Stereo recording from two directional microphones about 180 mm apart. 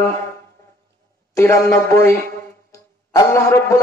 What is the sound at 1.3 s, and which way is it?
Music, 15° left (ahead or behind).